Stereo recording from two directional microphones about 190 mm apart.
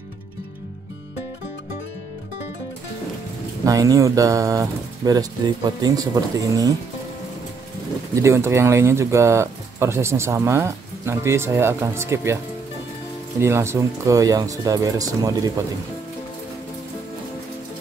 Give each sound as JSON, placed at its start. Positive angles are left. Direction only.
{"t": 3.6, "sound": "speech", "side_deg": -20}
{"t": 8.1, "sound": "speech", "side_deg": -15}
{"t": 13.4, "sound": "speech", "side_deg": -15}